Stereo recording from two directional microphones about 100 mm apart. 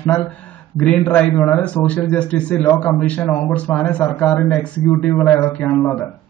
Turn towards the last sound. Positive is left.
turn(degrees=15)  # may be behind; listen again after turning